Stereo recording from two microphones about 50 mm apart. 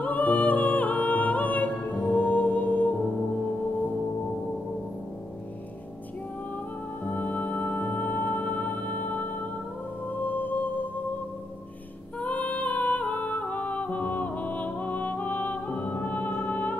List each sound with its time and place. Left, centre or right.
0.0 s music: left
7.1 s music: left
12.2 s music: left